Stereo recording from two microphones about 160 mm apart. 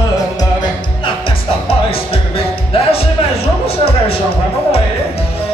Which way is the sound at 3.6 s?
35° left (ahead or behind).